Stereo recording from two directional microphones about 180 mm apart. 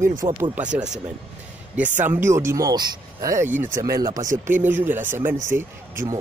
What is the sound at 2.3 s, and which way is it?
Speech, 15° right (ahead or behind).